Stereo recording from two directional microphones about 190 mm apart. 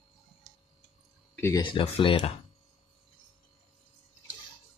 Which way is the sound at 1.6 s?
25° left (ahead or behind).